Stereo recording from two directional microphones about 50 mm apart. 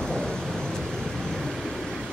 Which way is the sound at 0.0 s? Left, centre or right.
Centre.